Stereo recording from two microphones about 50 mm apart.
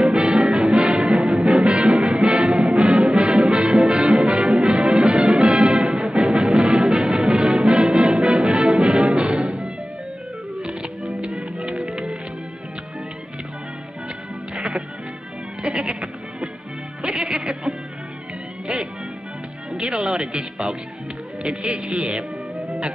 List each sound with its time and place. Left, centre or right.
0.0 s music: centre
10.6 s music: centre
14.5 s music: centre
19.7 s music: centre
21.4 s a man's voice: centre
22.7 s music: centre